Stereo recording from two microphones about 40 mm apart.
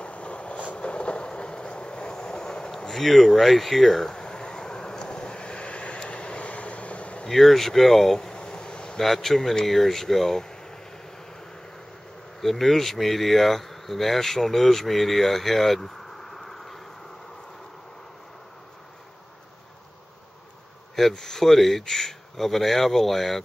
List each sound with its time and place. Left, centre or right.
0.0 s vehicle: left
2.8 s a sound: centre; by 7.2 s left
7.2 s speech: centre
8.3 s a sound: left
9.0 s a man's voice: centre
12.4 s speech: centre
21.1 s speech: centre